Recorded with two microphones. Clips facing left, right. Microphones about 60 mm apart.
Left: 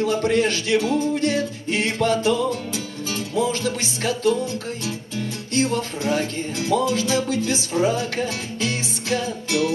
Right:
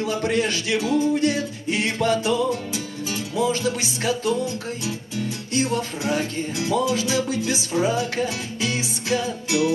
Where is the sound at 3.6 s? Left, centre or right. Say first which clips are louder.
Even; centre.